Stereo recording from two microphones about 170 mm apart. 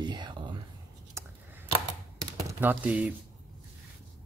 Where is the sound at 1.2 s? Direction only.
15° right (ahead or behind).